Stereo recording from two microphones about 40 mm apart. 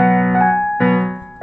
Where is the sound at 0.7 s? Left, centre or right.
Centre.